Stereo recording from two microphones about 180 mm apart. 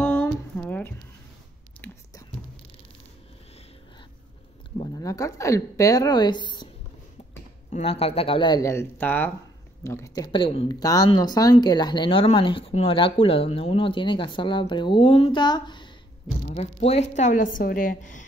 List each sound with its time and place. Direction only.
0.0 s a sound: 10° left (ahead or behind)
4.9 s speech: 20° left (ahead or behind)
7.7 s speech: 35° left (ahead or behind)
16.4 s a woman's voice: 35° left (ahead or behind)